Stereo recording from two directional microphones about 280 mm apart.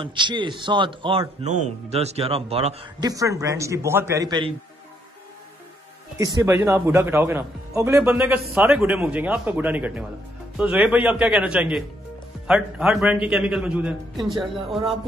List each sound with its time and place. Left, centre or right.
0.0 s a man's voice: centre
6.1 s a man's voice: centre